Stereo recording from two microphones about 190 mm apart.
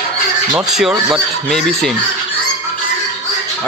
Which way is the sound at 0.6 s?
Centre (ahead or behind).